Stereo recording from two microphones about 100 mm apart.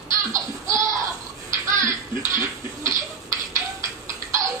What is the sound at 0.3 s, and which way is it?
Laughter, 30° right (ahead or behind).